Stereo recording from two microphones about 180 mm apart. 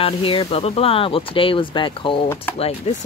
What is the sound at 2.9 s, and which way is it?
Speech, 40° left (ahead or behind).